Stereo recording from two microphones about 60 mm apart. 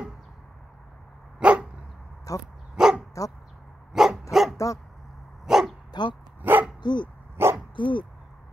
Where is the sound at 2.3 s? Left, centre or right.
Left.